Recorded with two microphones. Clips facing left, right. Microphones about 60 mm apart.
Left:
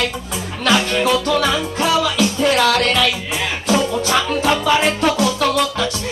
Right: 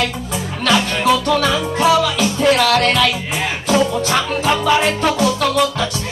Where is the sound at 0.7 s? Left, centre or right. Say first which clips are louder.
Right 1 dB; centre.